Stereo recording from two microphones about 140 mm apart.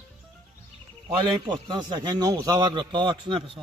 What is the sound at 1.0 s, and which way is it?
A man's voice, 35° right (ahead or behind).